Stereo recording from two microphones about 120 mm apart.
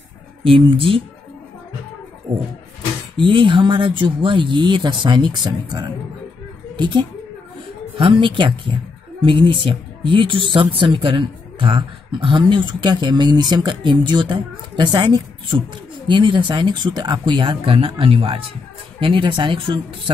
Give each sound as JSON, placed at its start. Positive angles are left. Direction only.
{"t": 0.4, "sound": "speech", "side_deg": -45}
{"t": 3.2, "sound": "speech", "side_deg": -45}